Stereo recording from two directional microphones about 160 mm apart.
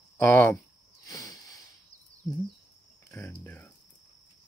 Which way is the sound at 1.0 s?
20° left (ahead or behind).